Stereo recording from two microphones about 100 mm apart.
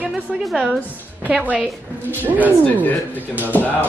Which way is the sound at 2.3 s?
15° right (ahead or behind).